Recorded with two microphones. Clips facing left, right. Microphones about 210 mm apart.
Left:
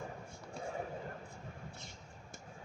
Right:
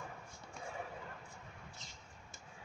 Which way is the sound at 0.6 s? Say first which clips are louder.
Left 5 dB; 35° left (ahead or behind).